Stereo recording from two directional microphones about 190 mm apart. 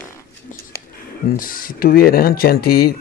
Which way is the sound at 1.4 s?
45° left (ahead or behind).